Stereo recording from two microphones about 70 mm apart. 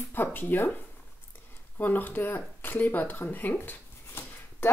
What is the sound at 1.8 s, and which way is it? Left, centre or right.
Speech, left.